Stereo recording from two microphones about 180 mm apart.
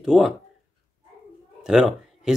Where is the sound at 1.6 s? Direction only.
5° right (ahead or behind).